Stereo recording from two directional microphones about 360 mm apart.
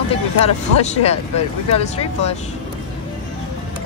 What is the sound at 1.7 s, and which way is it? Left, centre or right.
Speech, centre.